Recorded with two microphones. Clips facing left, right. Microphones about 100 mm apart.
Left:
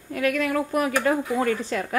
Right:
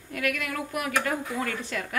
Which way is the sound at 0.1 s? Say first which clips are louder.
Left 7 dB; 35° left (ahead or behind).